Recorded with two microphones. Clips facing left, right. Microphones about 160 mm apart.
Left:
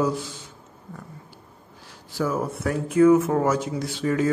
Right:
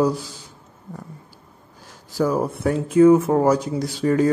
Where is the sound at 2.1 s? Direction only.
35° right (ahead or behind).